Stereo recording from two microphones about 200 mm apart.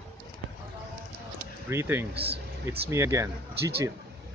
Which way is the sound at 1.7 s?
10° right (ahead or behind).